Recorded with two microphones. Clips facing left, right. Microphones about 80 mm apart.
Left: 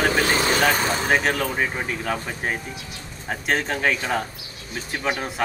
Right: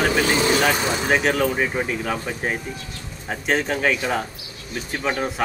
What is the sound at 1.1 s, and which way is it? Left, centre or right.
Speech, centre.